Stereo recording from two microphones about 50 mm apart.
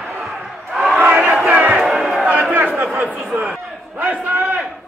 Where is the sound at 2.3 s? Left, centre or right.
Right.